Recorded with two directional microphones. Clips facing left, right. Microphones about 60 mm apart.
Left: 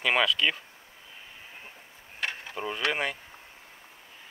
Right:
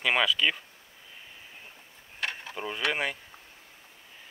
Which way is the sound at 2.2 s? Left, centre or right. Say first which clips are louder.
Left 1 dB; centre.